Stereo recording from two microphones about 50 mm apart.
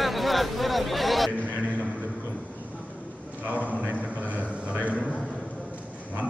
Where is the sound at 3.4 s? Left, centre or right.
Right.